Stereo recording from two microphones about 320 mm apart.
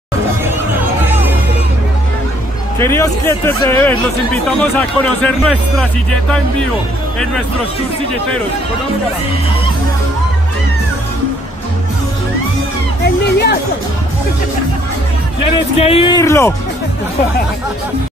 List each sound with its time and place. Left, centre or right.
2.8 s speech: centre
13.0 s music: left
15.5 s speech: centre